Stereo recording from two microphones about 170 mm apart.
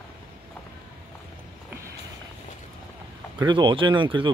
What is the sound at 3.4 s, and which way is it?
Speech, 25° right (ahead or behind).